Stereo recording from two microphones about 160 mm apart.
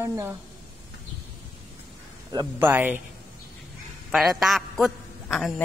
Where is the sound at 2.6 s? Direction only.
10° right (ahead or behind).